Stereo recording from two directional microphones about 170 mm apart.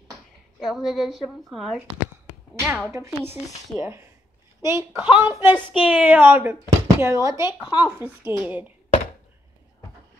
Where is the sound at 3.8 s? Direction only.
15° right (ahead or behind).